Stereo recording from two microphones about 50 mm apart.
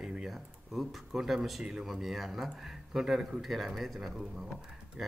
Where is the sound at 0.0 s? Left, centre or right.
Centre.